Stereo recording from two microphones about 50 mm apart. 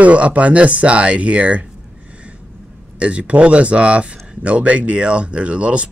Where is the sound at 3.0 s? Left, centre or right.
Right.